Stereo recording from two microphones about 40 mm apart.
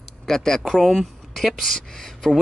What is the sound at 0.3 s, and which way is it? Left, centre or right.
Speech, centre.